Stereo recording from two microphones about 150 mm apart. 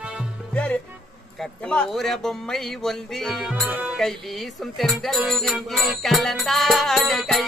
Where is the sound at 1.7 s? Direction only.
5° left (ahead or behind).